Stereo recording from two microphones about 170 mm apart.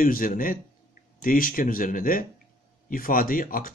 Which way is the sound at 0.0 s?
55° left (ahead or behind).